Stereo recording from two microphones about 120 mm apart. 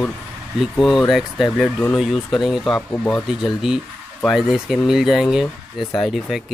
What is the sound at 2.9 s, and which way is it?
Speech, 15° left (ahead or behind).